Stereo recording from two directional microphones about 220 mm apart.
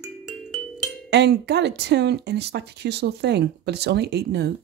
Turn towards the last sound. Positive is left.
turn(degrees=-50)  # may be behind; listen again after turning